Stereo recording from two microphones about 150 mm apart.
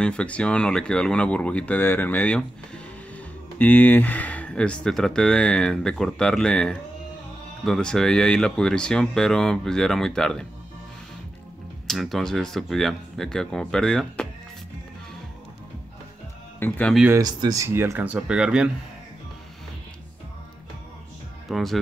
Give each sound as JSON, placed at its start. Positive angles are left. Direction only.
{"t": 0.0, "sound": "speech", "side_deg": 5}
{"t": 11.9, "sound": "speech", "side_deg": 0}
{"t": 16.5, "sound": "speech", "side_deg": 15}
{"t": 17.1, "sound": "speech", "side_deg": -25}
{"t": 21.5, "sound": "speech", "side_deg": 0}